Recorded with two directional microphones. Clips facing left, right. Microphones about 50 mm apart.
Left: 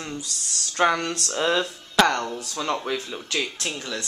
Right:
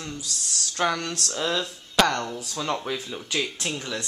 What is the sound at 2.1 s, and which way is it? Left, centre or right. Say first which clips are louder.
Speech: left 2 dB; centre.